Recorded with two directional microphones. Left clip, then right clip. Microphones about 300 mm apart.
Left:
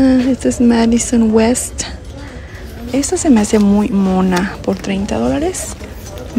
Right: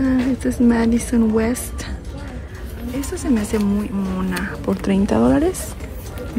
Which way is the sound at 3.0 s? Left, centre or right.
Centre.